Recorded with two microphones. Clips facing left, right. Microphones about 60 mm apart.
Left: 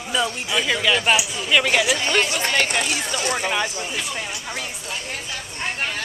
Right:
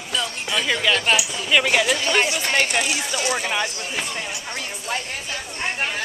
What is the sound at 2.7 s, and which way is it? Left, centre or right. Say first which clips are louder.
Speech: right 1 dB; centre.